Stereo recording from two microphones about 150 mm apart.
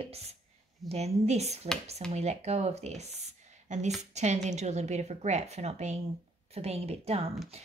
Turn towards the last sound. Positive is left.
turn(degrees=-40)  # may be behind; listen again after turning